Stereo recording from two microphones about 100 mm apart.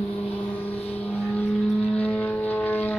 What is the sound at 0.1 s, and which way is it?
Vehicle, 20° left (ahead or behind).